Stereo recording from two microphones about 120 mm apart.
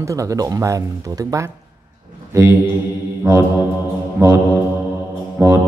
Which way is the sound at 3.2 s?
15° right (ahead or behind).